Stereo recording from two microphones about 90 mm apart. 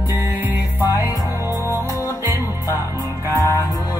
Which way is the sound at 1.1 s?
40° left (ahead or behind).